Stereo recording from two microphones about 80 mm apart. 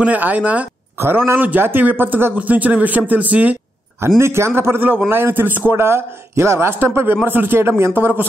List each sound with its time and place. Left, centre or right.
0.0 s speech: centre
0.9 s a man's voice: right
4.2 s a man's voice: right